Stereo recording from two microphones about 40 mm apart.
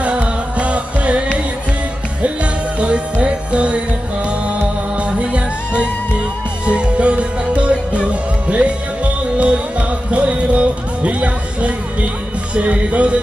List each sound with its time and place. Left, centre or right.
0.0 s music: right
2.8 s music: right